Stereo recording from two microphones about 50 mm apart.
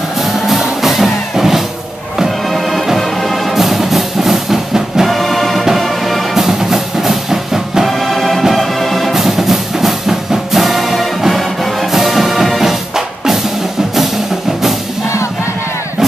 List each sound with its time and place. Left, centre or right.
0.5 s music: centre
2.5 s music: centre
6.3 s music: centre